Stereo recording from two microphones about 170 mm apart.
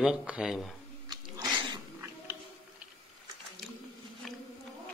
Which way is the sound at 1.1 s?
25° right (ahead or behind).